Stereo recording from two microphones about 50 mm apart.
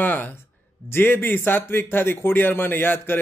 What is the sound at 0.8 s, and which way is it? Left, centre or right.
A man's voice, left.